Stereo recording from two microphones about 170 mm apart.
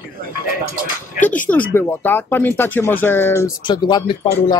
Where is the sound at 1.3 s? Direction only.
10° left (ahead or behind).